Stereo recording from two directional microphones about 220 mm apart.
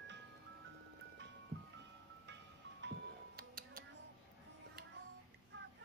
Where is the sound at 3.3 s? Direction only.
40° right (ahead or behind).